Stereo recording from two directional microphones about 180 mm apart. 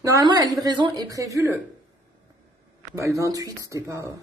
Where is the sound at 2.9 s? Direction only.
15° right (ahead or behind).